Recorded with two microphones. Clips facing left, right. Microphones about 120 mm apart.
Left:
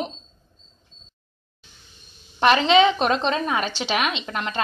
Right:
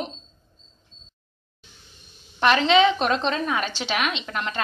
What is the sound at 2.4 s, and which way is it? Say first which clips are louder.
A woman's voice: left 2 dB; 15° left (ahead or behind).